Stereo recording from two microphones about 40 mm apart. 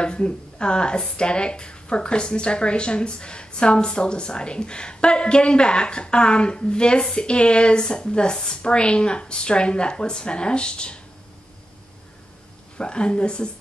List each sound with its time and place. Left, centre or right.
0.0 s speech: left
12.7 s speech: left